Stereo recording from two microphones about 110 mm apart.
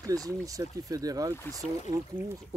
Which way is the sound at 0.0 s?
30° right (ahead or behind).